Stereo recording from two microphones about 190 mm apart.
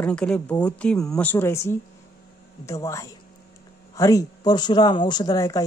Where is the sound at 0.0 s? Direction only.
5° left (ahead or behind).